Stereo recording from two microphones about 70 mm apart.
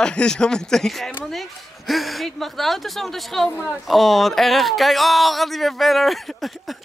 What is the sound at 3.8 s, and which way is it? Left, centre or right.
Speech, centre.